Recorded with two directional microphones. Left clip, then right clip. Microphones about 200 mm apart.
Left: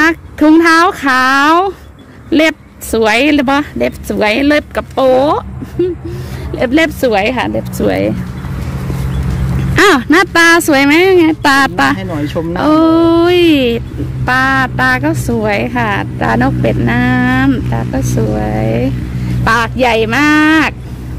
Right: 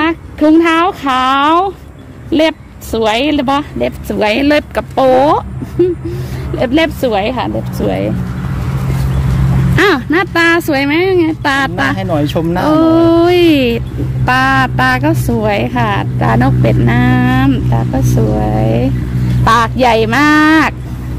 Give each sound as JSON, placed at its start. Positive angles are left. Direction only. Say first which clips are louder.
{"t": 0.0, "sound": "speech", "louder": "left 2 dB", "side_deg": 30}
{"t": 6.5, "sound": "speech", "louder": "left 1 dB", "side_deg": 20}
{"t": 9.8, "sound": "speech", "louder": "left 3 dB", "side_deg": 40}
{"t": 12.0, "sound": "speech", "louder": "right 3 dB", "side_deg": -50}
{"t": 12.5, "sound": "speech", "louder": "left 1 dB", "side_deg": 25}